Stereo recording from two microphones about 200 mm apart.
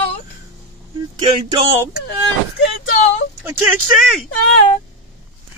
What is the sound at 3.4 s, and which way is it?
Speech, 10° right (ahead or behind).